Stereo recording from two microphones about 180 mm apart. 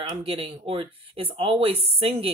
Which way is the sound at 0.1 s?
30° right (ahead or behind).